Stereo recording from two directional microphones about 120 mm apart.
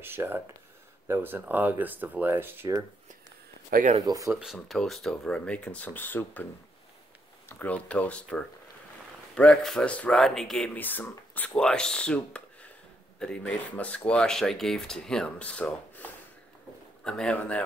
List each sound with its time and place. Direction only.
0.0 s speech: 20° right (ahead or behind)
4.0 s speech: 30° right (ahead or behind)
4.3 s speech: 5° right (ahead or behind); by 6.4 s 15° left (ahead or behind)
7.4 s speech: 15° left (ahead or behind)